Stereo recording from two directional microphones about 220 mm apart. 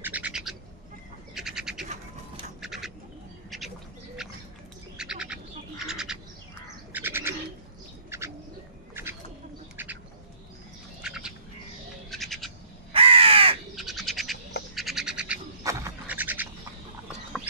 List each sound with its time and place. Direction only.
0.0 s bird: 5° right (ahead or behind)
1.9 s a sound: 30° right (ahead or behind)
2.6 s bird: centre (ahead or behind)
11.0 s bird: 5° right (ahead or behind)
12.9 s crow: 25° right (ahead or behind)
13.7 s bird: centre (ahead or behind)
17.3 s a sound: centre (ahead or behind)